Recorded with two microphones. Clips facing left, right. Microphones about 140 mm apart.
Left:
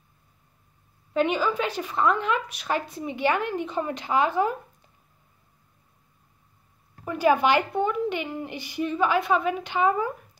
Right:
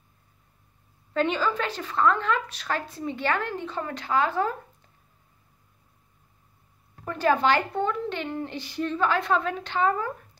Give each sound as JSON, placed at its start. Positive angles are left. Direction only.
{"t": 1.1, "sound": "a woman's voice", "side_deg": 15}
{"t": 7.1, "sound": "a woman's voice", "side_deg": 10}